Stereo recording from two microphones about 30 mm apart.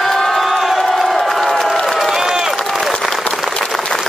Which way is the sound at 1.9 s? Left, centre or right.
Centre.